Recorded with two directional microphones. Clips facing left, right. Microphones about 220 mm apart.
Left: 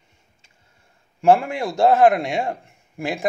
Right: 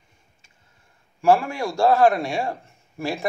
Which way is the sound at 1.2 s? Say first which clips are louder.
Left 2 dB; 20° left (ahead or behind).